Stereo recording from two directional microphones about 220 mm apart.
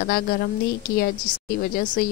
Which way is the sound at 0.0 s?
45° left (ahead or behind).